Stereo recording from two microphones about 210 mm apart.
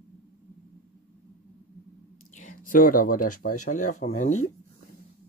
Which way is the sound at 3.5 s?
90° left.